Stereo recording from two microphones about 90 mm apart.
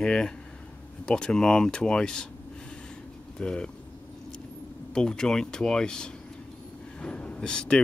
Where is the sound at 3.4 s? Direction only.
10° left (ahead or behind).